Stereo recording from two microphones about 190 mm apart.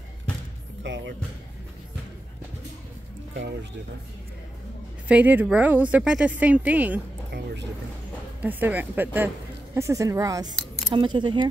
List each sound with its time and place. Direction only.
0.8 s speech: 75° right (ahead or behind)
5.0 s speech: 10° right (ahead or behind)
8.4 s speech: 10° right (ahead or behind)